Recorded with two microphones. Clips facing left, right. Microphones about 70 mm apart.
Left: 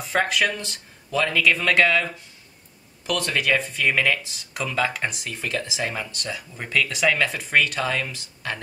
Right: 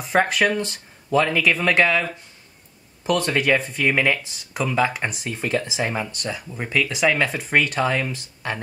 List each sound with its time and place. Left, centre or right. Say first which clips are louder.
0.1 s speech: right 4 dB; centre
3.1 s speech: right 4 dB; right